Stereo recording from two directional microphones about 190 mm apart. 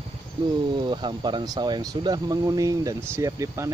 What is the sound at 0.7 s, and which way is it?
Speech, 25° right (ahead or behind).